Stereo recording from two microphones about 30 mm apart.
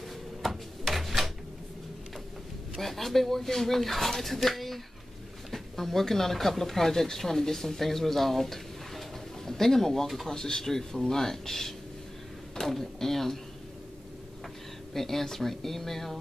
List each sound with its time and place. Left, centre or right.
0.4 s a sound: centre
2.8 s speech: centre
10.0 s speech: centre
10.3 s speech: centre
15.0 s speech: centre